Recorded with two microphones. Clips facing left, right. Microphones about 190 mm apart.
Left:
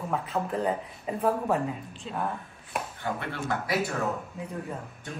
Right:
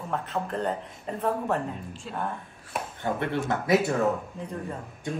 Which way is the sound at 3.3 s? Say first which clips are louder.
Right 4 dB; 25° right (ahead or behind).